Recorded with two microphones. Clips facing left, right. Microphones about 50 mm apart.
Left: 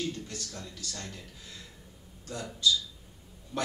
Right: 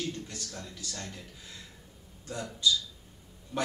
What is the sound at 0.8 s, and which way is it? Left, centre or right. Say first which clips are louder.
Speech: even; centre.